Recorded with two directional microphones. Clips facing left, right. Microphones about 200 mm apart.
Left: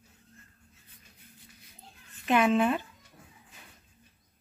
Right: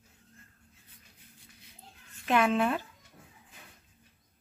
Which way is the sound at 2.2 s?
5° left (ahead or behind).